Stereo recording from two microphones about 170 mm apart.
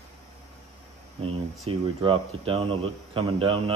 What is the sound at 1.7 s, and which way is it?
Speech, 35° right (ahead or behind).